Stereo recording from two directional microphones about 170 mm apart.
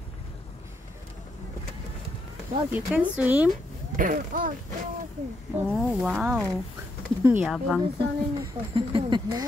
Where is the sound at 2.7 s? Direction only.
10° right (ahead or behind).